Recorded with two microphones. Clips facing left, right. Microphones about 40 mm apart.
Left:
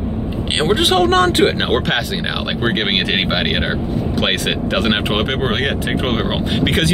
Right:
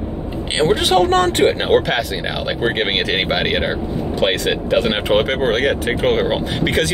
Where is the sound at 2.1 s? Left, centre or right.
Left.